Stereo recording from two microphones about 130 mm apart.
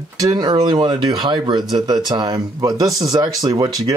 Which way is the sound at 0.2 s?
30° right (ahead or behind).